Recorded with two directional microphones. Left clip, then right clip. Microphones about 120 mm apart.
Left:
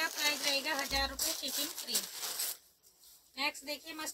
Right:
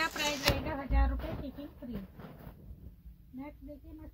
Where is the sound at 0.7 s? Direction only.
10° left (ahead or behind).